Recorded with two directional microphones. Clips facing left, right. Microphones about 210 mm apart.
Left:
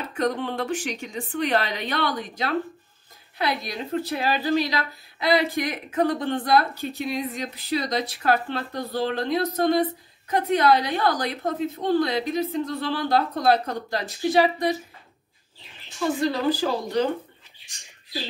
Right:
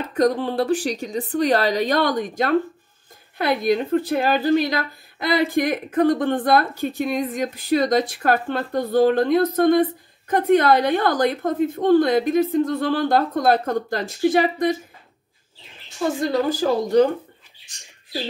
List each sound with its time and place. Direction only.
0.1 s a woman's voice: 35° right (ahead or behind); by 14.8 s 50° right (ahead or behind)
16.4 s a woman's voice: 45° right (ahead or behind)